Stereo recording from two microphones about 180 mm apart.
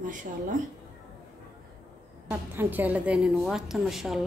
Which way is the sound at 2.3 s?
10° right (ahead or behind).